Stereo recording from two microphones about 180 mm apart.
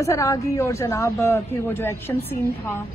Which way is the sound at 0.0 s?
20° left (ahead or behind).